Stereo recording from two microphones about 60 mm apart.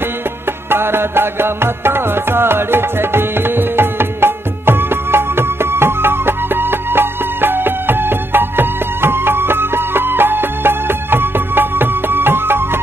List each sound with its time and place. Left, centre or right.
0.7 s music: right